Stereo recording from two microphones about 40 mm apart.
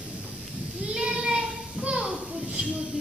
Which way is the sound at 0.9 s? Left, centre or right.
Centre.